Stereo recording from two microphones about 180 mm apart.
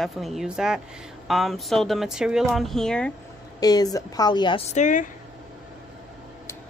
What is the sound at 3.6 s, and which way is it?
A woman's voice, 20° left (ahead or behind).